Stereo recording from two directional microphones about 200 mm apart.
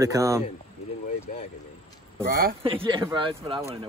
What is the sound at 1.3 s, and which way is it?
Speech, 40° left (ahead or behind).